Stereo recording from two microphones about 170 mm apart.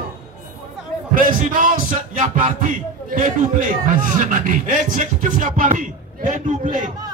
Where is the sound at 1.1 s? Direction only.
55° right (ahead or behind).